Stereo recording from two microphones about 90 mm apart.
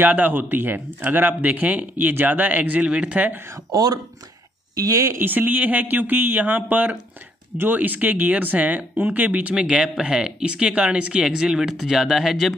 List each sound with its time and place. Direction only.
0.0 s speech: 20° right (ahead or behind)
3.7 s speech: 45° right (ahead or behind); by 12.5 s centre (ahead or behind)